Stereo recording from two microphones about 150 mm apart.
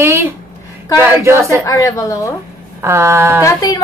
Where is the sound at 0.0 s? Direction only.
15° right (ahead or behind).